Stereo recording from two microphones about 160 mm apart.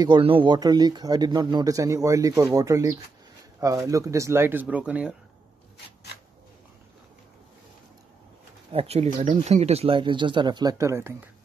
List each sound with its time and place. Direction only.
0.0 s speech: 30° right (ahead or behind); by 5.1 s 10° right (ahead or behind)
8.7 s speech: 40° right (ahead or behind); by 11.1 s 15° right (ahead or behind)